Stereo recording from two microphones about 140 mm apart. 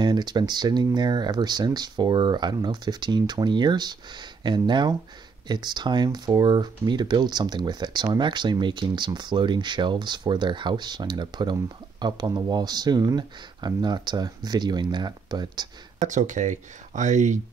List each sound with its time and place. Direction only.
0.0 s speech: 30° right (ahead or behind)
16.0 s speech: 60° right (ahead or behind)